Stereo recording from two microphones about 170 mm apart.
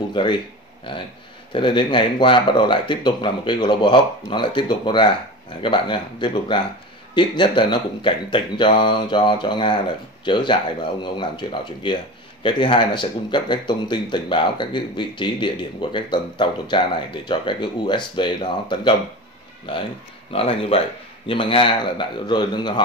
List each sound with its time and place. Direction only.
0.1 s a man's voice: 30° left (ahead or behind)
20.3 s a man's voice: 35° left (ahead or behind)